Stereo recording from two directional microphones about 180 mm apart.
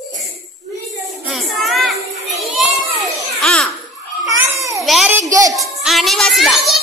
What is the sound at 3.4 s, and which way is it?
Music, 5° left (ahead or behind).